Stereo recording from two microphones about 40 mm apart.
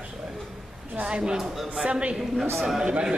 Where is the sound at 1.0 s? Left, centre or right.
Right.